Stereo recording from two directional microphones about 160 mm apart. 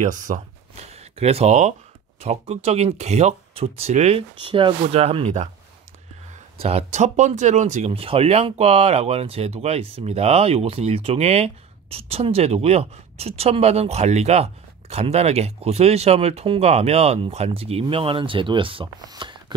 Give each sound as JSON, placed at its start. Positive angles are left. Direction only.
{"t": 0.0, "sound": "speech", "side_deg": -50}
{"t": 0.9, "sound": "speech", "side_deg": -40}
{"t": 6.6, "sound": "speech", "side_deg": -40}